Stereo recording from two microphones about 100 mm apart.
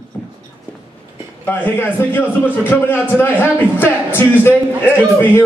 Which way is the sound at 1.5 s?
20° left (ahead or behind).